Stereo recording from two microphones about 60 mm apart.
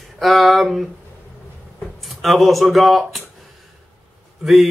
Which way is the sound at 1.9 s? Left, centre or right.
Centre.